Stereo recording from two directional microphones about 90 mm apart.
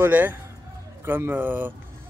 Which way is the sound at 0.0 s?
20° right (ahead or behind).